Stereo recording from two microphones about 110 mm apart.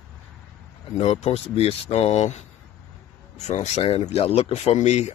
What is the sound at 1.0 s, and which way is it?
Speech, 80° left.